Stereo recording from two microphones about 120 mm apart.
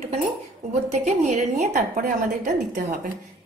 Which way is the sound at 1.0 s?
70° right (ahead or behind).